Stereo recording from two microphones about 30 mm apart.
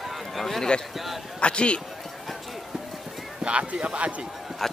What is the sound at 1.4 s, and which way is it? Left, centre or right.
Speech, left.